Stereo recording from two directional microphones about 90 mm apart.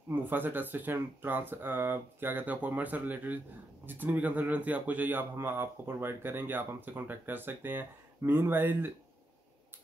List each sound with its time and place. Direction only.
0.1 s speech: 20° right (ahead or behind)